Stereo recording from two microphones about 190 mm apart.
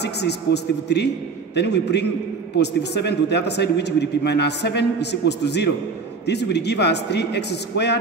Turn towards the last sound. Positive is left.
turn(degrees=60)  # may be behind; listen again after turning